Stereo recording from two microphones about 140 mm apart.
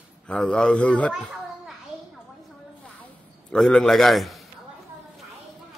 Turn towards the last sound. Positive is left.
turn(degrees=0)  # may be behind; listen again after turning